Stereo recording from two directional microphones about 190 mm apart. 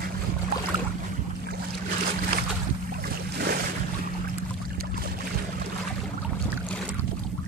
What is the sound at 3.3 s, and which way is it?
Boat, 55° right (ahead or behind).